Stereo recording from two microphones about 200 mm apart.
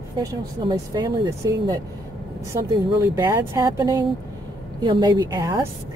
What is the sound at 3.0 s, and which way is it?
Speech, 10° right (ahead or behind).